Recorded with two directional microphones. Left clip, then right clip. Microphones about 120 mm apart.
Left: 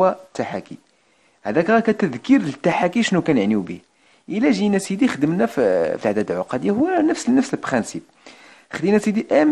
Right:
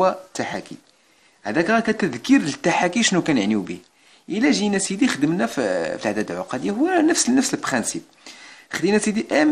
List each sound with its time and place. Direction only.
0.0 s speech: 35° left (ahead or behind)
6.9 s speech: 30° left (ahead or behind)